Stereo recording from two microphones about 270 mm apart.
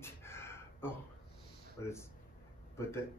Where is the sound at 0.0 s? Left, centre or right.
Centre.